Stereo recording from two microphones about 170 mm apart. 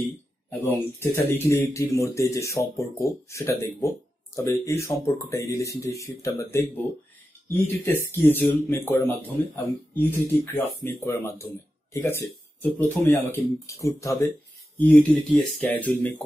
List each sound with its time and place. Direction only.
0.5 s speech: 15° left (ahead or behind)